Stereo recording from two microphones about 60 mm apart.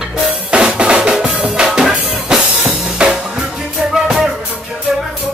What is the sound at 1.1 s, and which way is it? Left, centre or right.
Drum kit, centre.